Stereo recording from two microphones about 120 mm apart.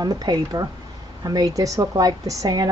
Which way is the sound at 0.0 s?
35° right (ahead or behind).